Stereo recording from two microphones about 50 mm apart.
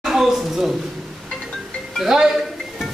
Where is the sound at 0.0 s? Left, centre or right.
Centre.